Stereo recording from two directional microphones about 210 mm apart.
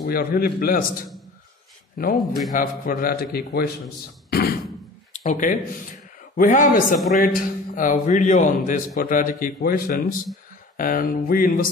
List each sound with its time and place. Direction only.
0.0 s a man's voice: 45° left (ahead or behind)
2.1 s a man's voice: centre (ahead or behind)
2.5 s a man's voice: 40° left (ahead or behind)
5.1 s a man's voice: 35° left (ahead or behind)